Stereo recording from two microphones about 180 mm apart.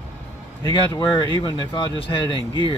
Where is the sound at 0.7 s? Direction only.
25° left (ahead or behind).